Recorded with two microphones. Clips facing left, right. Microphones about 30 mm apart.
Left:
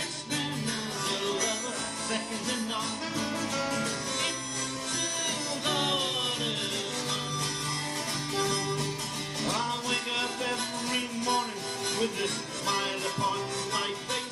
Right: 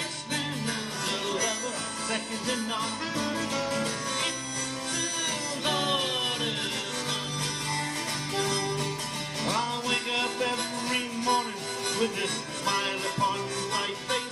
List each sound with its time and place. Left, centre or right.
5.9 s music: centre
9.6 s music: centre
9.9 s music: right
10.4 s music: right
12.6 s music: centre